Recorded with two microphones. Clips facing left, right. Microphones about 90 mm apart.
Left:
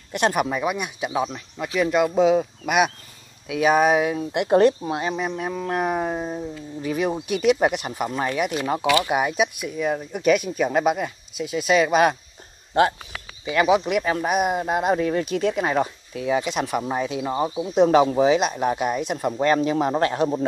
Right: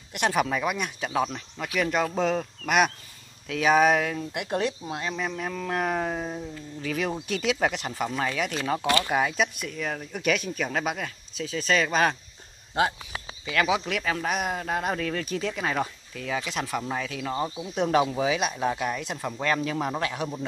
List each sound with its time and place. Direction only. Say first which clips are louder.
0.3 s speech: left 2 dB; 10° left (ahead or behind)
4.6 s speech: left 11 dB; 50° left (ahead or behind)
5.1 s speech: left 4 dB; 20° left (ahead or behind)
13.8 s speech: left 6 dB; 15° left (ahead or behind)
20.0 s a man's voice: left 9 dB; 35° left (ahead or behind)